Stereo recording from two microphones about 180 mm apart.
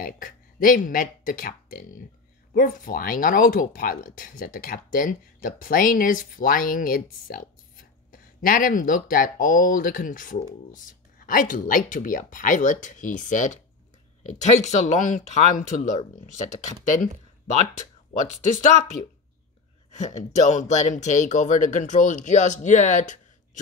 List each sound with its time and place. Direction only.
0.0 s speech: 50° left (ahead or behind)
18.4 s speech: 45° left (ahead or behind)